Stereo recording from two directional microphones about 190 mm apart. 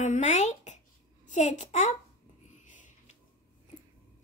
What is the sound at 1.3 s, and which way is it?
Speech, 40° left (ahead or behind).